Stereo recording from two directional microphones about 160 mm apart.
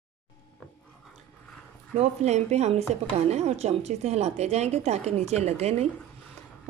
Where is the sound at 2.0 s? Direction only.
45° right (ahead or behind).